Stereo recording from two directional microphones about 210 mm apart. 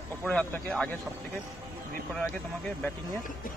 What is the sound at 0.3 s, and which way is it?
Speech, 5° left (ahead or behind).